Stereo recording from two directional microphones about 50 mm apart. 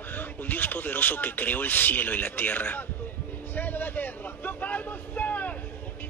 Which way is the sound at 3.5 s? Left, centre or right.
Left.